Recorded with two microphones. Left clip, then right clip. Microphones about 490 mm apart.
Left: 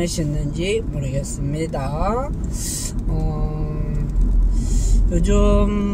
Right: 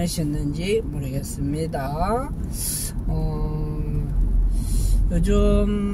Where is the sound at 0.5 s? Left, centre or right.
Right.